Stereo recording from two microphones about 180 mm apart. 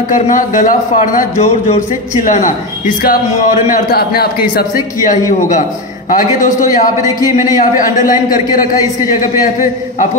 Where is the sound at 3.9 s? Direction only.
60° left (ahead or behind).